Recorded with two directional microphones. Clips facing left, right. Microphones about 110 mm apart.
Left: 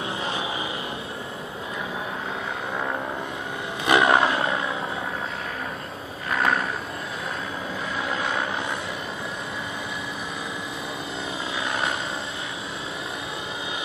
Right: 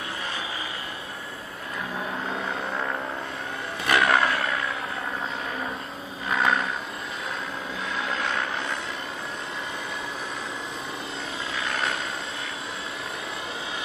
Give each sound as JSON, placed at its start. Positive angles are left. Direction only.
{"t": 3.8, "sound": "vehicle", "side_deg": 20}
{"t": 6.3, "sound": "a sound", "side_deg": 0}
{"t": 8.1, "sound": "vehicle", "side_deg": 10}
{"t": 11.6, "sound": "vehicle", "side_deg": 15}